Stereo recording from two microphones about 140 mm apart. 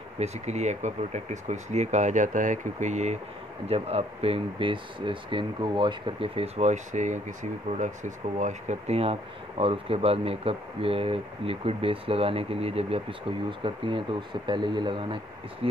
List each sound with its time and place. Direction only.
0.2 s speech: 55° right (ahead or behind)